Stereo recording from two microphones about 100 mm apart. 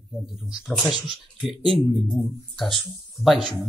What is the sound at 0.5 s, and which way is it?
Speech, 5° right (ahead or behind).